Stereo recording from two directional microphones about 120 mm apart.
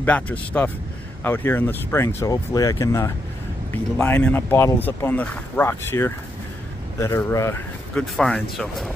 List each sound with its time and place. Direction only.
0.0 s speech: 10° left (ahead or behind)
3.7 s speech: 15° left (ahead or behind)
7.9 s speech: 5° left (ahead or behind)